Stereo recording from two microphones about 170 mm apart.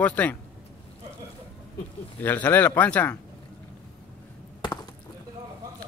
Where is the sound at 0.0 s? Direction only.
10° left (ahead or behind).